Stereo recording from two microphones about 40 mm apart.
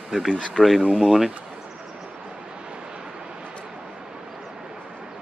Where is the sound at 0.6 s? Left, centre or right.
Right.